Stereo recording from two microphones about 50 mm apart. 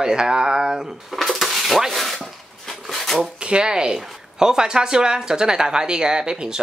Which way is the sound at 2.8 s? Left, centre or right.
Centre.